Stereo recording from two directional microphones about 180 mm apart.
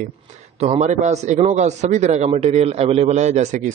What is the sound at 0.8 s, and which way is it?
A man's voice, 40° right (ahead or behind).